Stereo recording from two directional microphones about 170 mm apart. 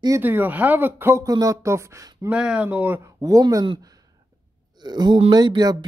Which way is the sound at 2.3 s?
5° right (ahead or behind).